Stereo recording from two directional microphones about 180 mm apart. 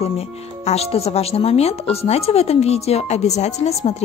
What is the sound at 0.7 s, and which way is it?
Speech, 35° left (ahead or behind).